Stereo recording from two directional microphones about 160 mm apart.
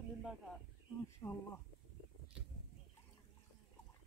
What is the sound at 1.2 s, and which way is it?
Speech, 30° left (ahead or behind).